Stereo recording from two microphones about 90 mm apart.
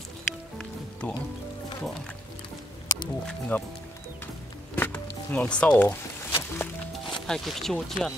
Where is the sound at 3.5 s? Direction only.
20° left (ahead or behind).